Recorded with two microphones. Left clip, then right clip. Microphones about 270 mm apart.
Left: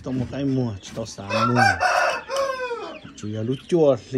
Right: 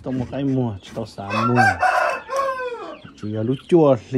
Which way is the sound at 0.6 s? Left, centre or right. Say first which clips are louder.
Right 2 dB; right.